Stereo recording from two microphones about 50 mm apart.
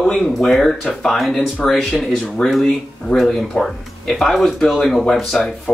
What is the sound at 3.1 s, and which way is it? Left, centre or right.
Speech, centre.